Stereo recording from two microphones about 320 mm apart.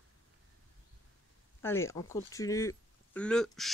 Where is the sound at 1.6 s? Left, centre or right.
Centre.